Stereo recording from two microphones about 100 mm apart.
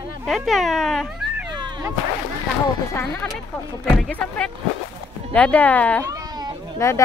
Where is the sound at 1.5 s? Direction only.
50° right (ahead or behind).